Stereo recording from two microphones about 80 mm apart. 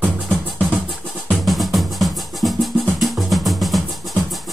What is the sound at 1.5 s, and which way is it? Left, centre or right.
Music, centre.